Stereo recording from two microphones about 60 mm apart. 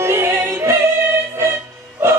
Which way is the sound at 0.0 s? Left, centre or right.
Right.